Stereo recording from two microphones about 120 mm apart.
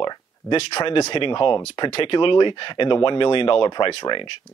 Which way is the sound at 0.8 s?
45° left (ahead or behind).